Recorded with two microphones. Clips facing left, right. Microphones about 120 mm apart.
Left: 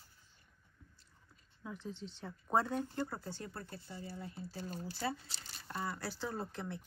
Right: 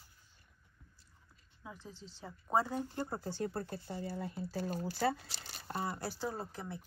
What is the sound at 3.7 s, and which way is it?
Speech, 60° right (ahead or behind).